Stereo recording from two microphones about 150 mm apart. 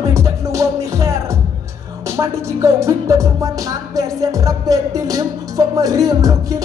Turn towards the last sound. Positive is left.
turn(degrees=-25)  # may be behind; listen again after turning